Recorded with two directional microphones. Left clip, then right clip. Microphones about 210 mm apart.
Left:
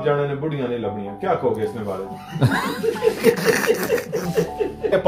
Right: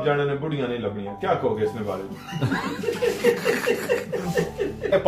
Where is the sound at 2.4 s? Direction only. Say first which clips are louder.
Left 5 dB; 50° left (ahead or behind).